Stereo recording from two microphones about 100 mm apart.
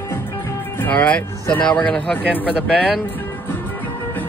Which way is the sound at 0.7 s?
15° left (ahead or behind).